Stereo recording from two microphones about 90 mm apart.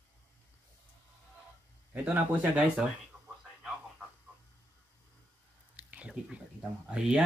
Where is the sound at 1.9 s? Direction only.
20° right (ahead or behind).